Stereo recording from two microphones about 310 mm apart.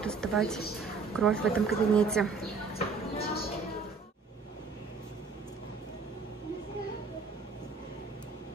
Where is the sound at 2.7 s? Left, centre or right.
Centre.